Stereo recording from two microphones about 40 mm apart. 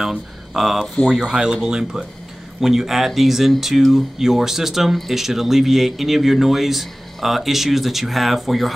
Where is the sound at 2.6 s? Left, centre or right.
Centre.